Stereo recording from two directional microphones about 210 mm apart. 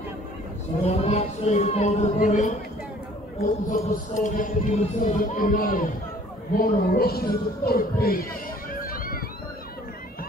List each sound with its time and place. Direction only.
0.8 s speech: 30° left (ahead or behind)
3.8 s speech: 35° left (ahead or behind)
8.7 s a sound: 40° left (ahead or behind)